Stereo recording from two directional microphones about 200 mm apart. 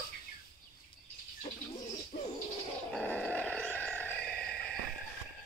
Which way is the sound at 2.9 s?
5° left (ahead or behind).